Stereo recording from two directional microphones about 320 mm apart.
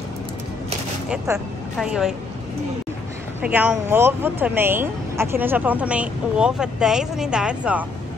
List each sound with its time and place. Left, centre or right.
1.0 s speech: centre
3.4 s speech: centre